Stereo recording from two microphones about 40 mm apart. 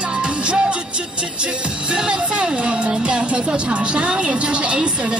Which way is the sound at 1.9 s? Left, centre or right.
Right.